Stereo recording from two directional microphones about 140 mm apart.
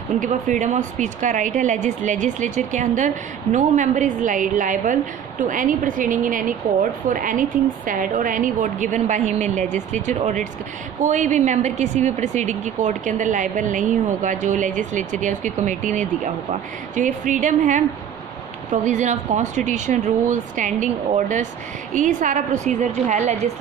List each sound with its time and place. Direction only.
0.2 s a woman's voice: 65° right (ahead or behind)